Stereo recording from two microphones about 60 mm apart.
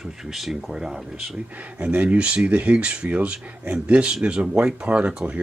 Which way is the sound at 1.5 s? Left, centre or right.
Right.